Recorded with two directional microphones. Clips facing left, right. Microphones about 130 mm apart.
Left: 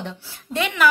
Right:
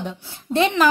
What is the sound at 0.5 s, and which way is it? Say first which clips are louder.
Speech: right 6 dB; 30° right (ahead or behind).